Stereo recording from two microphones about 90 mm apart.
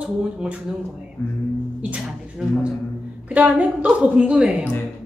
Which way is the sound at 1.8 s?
15° right (ahead or behind).